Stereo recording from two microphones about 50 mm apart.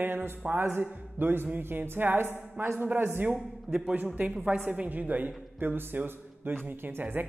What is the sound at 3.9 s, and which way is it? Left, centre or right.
A man's voice, right.